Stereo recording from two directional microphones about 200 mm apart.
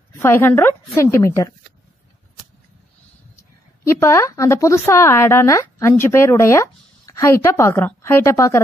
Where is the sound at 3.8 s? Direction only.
15° left (ahead or behind).